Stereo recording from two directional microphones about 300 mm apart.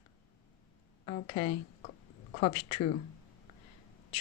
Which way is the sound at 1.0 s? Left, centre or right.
Left.